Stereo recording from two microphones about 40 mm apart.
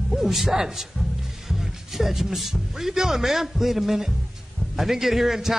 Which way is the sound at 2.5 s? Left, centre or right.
Centre.